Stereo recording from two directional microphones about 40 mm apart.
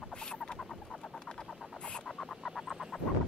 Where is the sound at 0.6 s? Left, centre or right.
Centre.